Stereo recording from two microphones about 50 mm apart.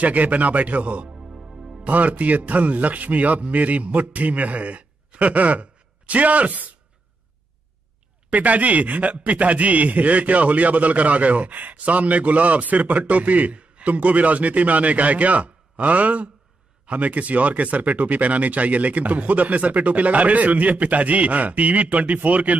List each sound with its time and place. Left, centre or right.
0.0 s a man's voice: right
1.1 s music: centre
1.8 s a man's voice: right
8.3 s a man's voice: right